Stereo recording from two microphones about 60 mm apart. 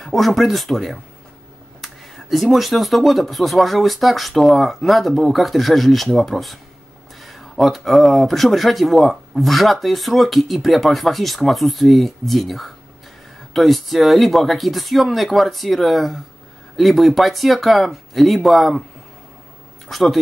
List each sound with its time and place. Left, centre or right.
0.0 s speech: centre
19.9 s speech: centre